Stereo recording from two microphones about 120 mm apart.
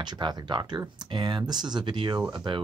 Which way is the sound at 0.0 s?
35° right (ahead or behind).